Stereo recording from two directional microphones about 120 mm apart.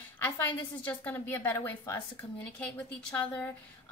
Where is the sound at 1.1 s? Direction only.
20° left (ahead or behind).